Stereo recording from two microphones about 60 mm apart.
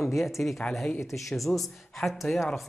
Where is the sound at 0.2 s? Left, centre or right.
Centre.